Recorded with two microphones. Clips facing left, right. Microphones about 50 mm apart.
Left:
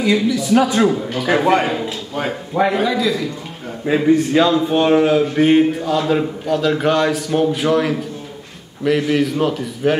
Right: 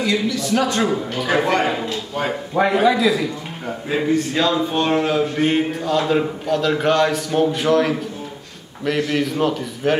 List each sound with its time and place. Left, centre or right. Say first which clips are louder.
0.0 s a man's voice: left 4 dB; centre
3.9 s speech: left 6 dB; centre
9.1 s speech: left 2 dB; centre